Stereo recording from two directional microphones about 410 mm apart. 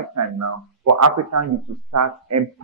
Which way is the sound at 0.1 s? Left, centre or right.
Right.